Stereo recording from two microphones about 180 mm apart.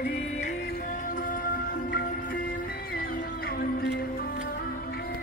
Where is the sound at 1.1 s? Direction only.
50° left (ahead or behind).